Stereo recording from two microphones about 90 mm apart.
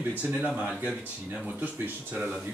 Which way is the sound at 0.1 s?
15° right (ahead or behind).